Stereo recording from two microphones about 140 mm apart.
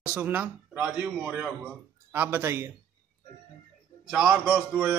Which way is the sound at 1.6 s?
20° right (ahead or behind).